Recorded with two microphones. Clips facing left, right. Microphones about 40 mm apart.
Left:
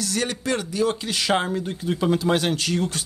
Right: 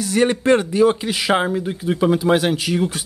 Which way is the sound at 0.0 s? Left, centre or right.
Right.